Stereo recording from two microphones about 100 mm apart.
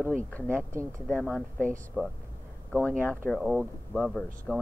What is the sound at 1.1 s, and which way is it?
Speech, 15° left (ahead or behind).